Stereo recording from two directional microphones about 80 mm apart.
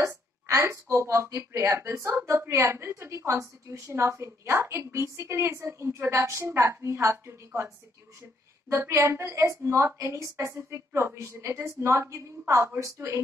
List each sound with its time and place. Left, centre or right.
0.5 s a woman's voice: right